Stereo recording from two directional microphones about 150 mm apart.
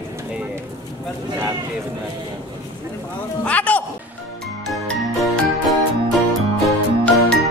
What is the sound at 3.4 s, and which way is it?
Speech, 10° left (ahead or behind).